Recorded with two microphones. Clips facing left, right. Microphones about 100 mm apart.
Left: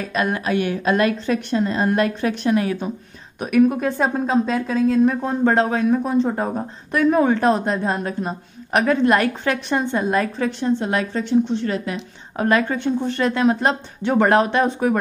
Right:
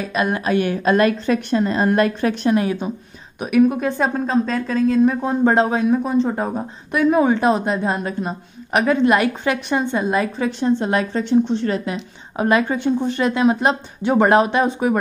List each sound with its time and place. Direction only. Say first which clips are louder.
0.0 s a woman's voice: right 1 dB; 10° right (ahead or behind)
0.3 s a woman's voice: right 2 dB; 30° right (ahead or behind)
0.6 s a woman's voice: right 3 dB; 45° right (ahead or behind)
2.4 s a woman's voice: right 1 dB; 25° right (ahead or behind)
3.3 s speech: right 1 dB; 5° right (ahead or behind)
5.9 s speech: right 1 dB; centre (ahead or behind)
10.6 s a woman's voice: right 3 dB; 30° right (ahead or behind)
11.9 s a woman's voice: right 1 dB; 15° right (ahead or behind)